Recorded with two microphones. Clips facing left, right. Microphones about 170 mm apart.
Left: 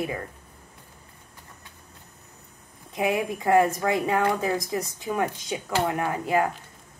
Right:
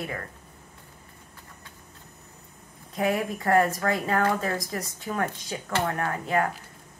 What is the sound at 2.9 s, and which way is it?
Speech, 20° left (ahead or behind).